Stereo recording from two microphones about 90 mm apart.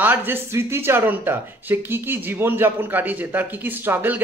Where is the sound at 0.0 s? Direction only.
20° right (ahead or behind).